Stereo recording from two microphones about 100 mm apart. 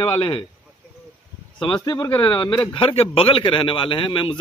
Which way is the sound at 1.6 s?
50° left (ahead or behind).